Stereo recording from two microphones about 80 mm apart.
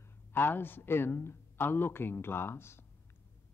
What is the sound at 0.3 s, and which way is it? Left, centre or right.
A man's voice, left.